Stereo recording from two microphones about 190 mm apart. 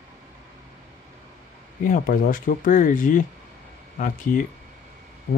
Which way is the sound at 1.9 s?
45° left (ahead or behind).